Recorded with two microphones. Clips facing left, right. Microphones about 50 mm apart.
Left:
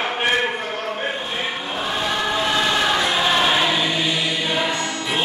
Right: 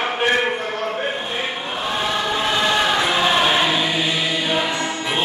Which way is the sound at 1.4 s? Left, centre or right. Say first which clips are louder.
Even; centre.